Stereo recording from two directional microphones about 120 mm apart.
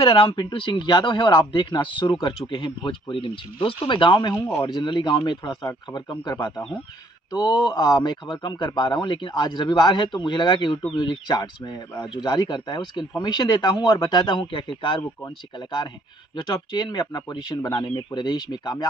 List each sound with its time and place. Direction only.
0.0 s speech: 45° left (ahead or behind)
16.4 s speech: 35° left (ahead or behind)